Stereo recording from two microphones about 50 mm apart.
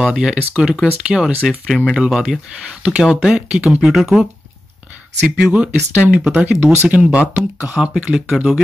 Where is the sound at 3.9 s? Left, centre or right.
Centre.